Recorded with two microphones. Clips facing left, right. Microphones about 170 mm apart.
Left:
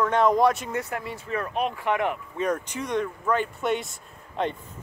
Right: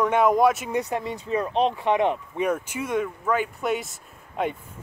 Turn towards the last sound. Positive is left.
turn(degrees=-5)  # may be behind; listen again after turning